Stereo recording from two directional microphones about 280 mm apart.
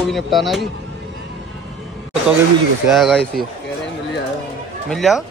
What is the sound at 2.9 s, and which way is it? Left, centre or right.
Speech, centre.